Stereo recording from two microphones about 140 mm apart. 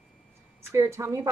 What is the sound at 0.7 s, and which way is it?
Speech, 20° right (ahead or behind).